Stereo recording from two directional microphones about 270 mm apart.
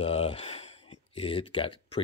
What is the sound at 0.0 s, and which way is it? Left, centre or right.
Speech, left.